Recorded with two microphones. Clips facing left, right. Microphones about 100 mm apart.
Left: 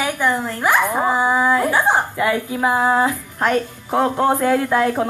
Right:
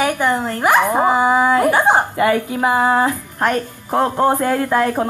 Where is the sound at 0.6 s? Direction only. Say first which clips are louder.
Right 5 dB; 15° right (ahead or behind).